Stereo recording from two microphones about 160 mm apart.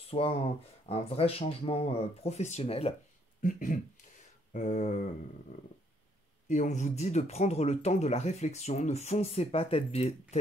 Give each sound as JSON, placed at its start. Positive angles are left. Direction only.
{"t": 0.1, "sound": "speech", "side_deg": 35}
{"t": 3.4, "sound": "speech", "side_deg": 55}
{"t": 6.5, "sound": "speech", "side_deg": 50}